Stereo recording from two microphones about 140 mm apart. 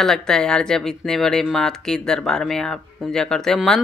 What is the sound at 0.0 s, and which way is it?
Speech, 5° left (ahead or behind).